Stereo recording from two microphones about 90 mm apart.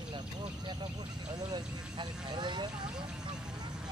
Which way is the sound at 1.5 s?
60° right (ahead or behind).